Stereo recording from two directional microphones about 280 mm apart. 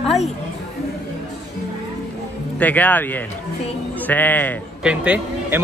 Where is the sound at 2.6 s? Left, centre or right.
Centre.